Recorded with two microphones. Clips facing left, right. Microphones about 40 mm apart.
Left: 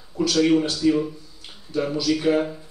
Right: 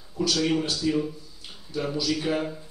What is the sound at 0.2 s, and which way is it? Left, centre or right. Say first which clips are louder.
Speech: left 6 dB; centre.